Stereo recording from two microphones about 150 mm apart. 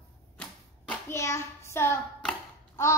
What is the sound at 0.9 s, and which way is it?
Hands, 20° left (ahead or behind).